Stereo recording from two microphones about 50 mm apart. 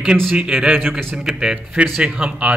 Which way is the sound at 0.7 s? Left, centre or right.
Right.